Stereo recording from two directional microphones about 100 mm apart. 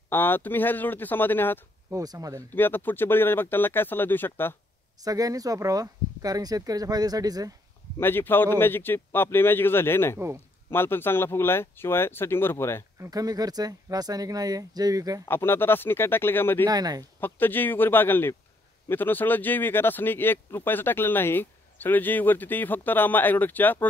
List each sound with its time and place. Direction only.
0.1 s speech: 20° left (ahead or behind)
1.9 s speech: 35° right (ahead or behind)
2.5 s speech: 20° left (ahead or behind)
5.0 s speech: 35° right (ahead or behind)
8.0 s speech: 20° left (ahead or behind)
10.1 s speech: 25° right (ahead or behind)
10.7 s speech: 20° left (ahead or behind)
13.0 s speech: 40° right (ahead or behind)
15.2 s speech: 20° left (ahead or behind)
16.6 s speech: 40° right (ahead or behind)
17.2 s speech: 20° left (ahead or behind)